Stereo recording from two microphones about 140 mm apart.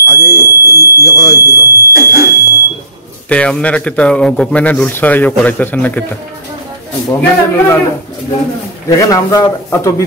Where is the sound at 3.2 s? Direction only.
10° left (ahead or behind).